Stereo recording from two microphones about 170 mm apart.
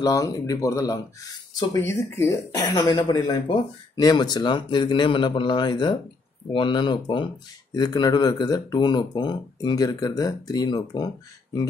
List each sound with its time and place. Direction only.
0.0 s speech: 20° left (ahead or behind)